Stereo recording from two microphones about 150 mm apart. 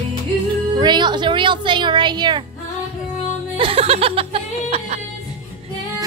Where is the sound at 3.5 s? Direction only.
40° right (ahead or behind).